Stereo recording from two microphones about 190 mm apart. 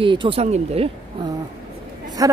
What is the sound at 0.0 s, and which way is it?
Speech, 25° right (ahead or behind).